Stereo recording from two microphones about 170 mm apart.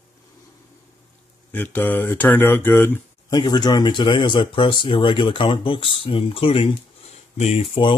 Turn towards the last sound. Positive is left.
turn(degrees=35)  # may be behind; listen again after turning